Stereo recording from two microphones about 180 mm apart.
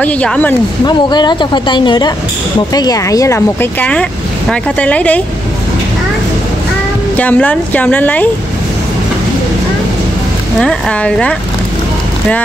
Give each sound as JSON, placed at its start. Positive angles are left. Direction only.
{"t": 0.0, "sound": "speech", "side_deg": 5}
{"t": 0.8, "sound": "speech", "side_deg": 25}
{"t": 7.2, "sound": "speech", "side_deg": 10}
{"t": 10.6, "sound": "speech", "side_deg": 5}